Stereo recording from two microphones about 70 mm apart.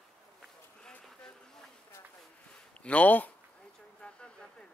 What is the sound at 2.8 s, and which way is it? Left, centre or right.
Speech, left.